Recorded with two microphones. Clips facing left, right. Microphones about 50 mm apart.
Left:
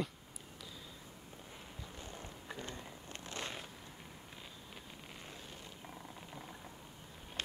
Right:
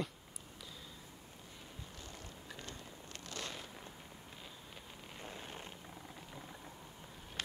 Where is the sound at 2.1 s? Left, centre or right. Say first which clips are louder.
Left 3 dB; left.